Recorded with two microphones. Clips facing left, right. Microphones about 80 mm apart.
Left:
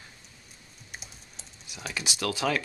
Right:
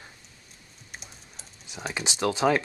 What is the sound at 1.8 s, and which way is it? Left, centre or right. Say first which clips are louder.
Speech: right 4 dB; right.